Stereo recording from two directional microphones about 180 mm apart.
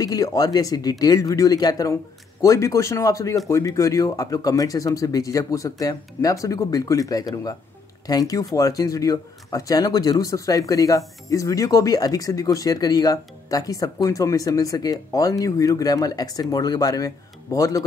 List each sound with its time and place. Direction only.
0.0 s speech: 20° left (ahead or behind)